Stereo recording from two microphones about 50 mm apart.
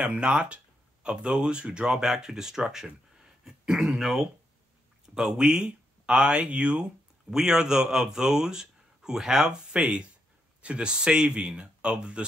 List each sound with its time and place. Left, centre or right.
0.0 s speech: right; by 4.3 s centre
5.1 s speech: centre
7.2 s speech: centre